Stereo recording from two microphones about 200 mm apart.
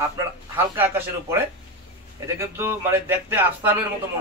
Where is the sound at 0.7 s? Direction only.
10° right (ahead or behind).